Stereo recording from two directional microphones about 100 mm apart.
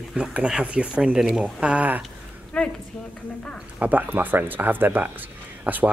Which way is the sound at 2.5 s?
10° left (ahead or behind).